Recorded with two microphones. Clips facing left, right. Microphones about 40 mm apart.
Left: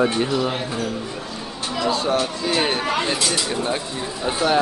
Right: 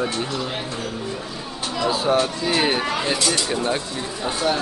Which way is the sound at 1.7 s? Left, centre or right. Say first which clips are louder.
Right 1 dB; centre.